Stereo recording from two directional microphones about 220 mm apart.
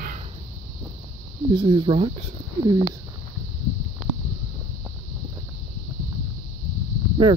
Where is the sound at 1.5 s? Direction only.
20° right (ahead or behind).